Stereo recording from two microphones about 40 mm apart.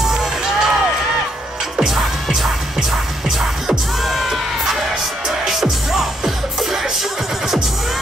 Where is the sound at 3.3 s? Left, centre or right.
Centre.